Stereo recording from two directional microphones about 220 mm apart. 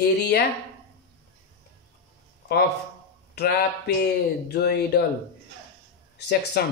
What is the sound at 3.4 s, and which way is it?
Speech, 45° left (ahead or behind).